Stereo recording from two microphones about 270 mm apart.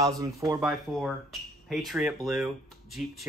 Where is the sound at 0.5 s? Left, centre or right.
Centre.